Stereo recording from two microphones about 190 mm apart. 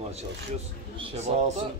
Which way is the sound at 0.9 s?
30° right (ahead or behind).